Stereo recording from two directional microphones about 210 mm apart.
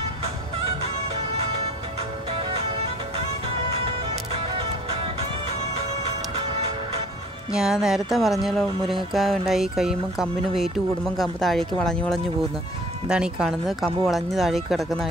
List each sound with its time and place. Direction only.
1.3 s music: 30° right (ahead or behind)
4.3 s music: 25° right (ahead or behind)
7.5 s speech: 5° right (ahead or behind)